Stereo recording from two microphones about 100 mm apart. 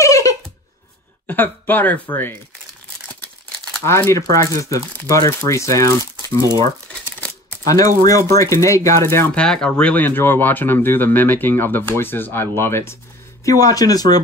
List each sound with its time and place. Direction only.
0.0 s a sound: 35° left (ahead or behind)
1.2 s speech: 20° left (ahead or behind)
3.8 s speech: 25° left (ahead or behind)
6.9 s crumpling: 10° left (ahead or behind)
7.6 s speech: 35° left (ahead or behind)
9.3 s speech: 10° left (ahead or behind); by 12.9 s 25° left (ahead or behind)
13.5 s speech: 35° left (ahead or behind)